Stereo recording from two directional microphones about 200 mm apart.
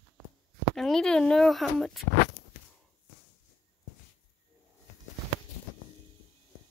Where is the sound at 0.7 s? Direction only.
Centre (ahead or behind).